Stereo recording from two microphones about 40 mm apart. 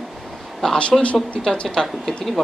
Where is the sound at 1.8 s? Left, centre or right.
Centre.